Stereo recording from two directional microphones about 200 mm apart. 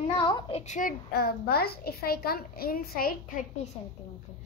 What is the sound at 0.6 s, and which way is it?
Speech, 35° left (ahead or behind).